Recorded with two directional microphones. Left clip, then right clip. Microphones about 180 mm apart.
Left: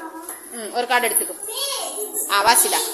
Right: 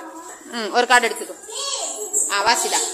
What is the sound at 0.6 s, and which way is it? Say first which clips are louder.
Speech: right 5 dB; 40° right (ahead or behind).